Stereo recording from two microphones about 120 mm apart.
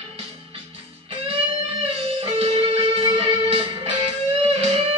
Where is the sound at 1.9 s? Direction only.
50° right (ahead or behind).